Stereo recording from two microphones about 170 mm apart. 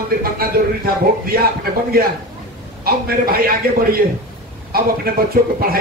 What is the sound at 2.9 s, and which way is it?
Speech, 60° right (ahead or behind).